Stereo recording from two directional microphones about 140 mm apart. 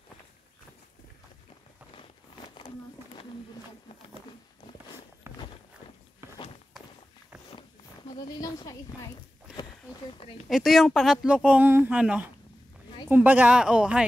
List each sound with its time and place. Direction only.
5.2 s walk: 20° right (ahead or behind)
8.1 s a woman's voice: 30° left (ahead or behind)
10.1 s speech: 45° left (ahead or behind)
10.5 s speech: centre (ahead or behind)